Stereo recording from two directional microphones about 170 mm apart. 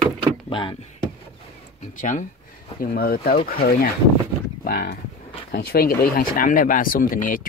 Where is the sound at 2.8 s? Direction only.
60° left (ahead or behind).